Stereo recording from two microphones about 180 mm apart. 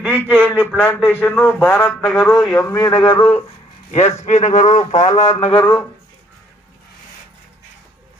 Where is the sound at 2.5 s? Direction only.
20° left (ahead or behind).